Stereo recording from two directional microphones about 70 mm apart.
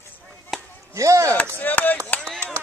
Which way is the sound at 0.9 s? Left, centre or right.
Right.